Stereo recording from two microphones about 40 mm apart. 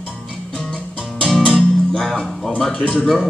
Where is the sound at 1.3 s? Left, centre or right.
Left.